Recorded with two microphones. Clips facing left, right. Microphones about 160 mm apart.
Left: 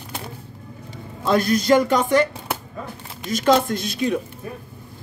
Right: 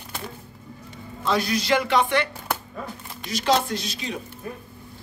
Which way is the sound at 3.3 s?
50° left (ahead or behind).